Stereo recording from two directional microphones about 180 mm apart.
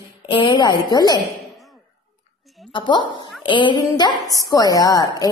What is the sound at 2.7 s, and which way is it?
A woman's voice, 25° left (ahead or behind).